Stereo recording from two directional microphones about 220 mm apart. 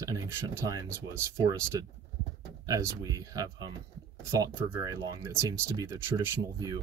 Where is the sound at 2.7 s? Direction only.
15° right (ahead or behind).